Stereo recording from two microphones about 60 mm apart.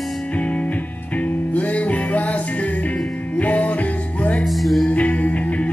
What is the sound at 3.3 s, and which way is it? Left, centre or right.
Music, left.